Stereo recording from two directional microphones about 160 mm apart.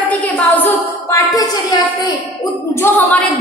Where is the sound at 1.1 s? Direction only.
20° left (ahead or behind).